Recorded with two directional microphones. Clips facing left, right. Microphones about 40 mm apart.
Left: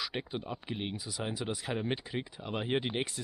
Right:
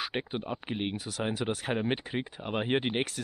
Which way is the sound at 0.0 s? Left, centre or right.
Right.